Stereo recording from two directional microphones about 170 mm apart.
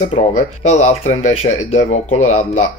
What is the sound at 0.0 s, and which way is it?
Speech, 40° left (ahead or behind).